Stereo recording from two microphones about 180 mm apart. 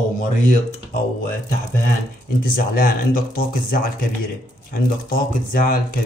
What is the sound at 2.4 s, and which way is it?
Speech, 55° left (ahead or behind).